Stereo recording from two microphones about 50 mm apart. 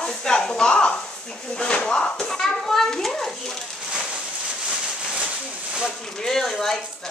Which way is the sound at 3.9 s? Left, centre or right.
Centre.